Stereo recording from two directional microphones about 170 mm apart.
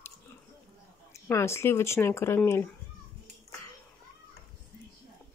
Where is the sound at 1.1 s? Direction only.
15° left (ahead or behind).